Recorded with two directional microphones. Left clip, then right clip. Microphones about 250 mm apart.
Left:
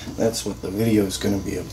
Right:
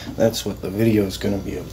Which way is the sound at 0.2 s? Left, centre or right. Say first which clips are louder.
Right 3 dB; right.